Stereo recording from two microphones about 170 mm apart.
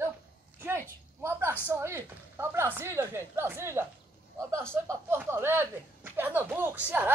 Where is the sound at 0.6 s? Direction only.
15° right (ahead or behind).